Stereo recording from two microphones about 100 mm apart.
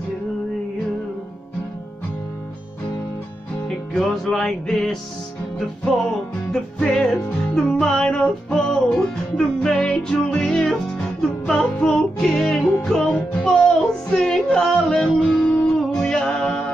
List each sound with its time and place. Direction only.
3.6 s music: 5° left (ahead or behind)
6.5 s music: 5° left (ahead or behind)